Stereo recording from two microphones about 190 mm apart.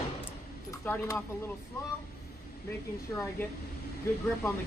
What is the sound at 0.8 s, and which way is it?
Speech, 10° left (ahead or behind).